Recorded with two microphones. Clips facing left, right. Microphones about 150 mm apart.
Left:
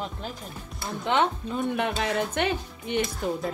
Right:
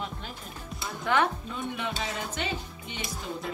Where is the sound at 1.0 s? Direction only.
25° left (ahead or behind).